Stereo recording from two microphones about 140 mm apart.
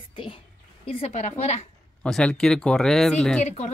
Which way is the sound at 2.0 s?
5° left (ahead or behind).